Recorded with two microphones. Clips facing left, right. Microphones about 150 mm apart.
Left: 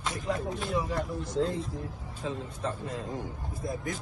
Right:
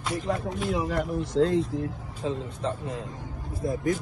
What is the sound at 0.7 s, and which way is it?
Speech, 90° right.